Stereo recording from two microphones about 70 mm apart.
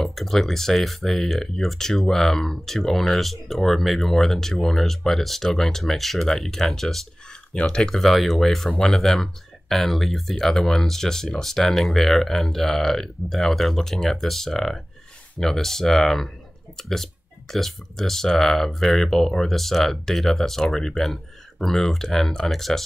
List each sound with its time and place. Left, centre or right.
0.0 s speech: centre